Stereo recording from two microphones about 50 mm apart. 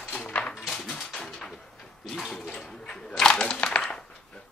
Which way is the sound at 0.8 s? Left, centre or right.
Centre.